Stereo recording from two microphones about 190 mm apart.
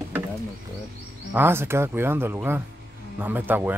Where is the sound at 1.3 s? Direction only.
10° right (ahead or behind).